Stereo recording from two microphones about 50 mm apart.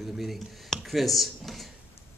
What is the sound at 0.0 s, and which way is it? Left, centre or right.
A man's voice, centre.